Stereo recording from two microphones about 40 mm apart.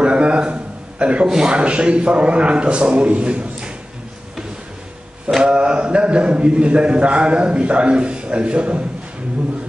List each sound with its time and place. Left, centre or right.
0.0 s a sound: right
1.2 s a man's voice: centre
5.3 s mantra: right
5.6 s a man's voice: right